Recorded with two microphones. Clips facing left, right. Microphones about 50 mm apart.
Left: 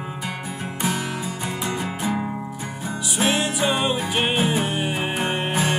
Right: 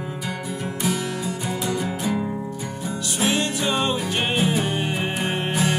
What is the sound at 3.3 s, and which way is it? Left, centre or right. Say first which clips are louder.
Music: left 1 dB; centre.